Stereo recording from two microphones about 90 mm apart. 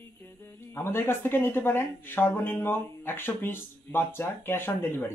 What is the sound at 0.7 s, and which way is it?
Speech, 25° left (ahead or behind).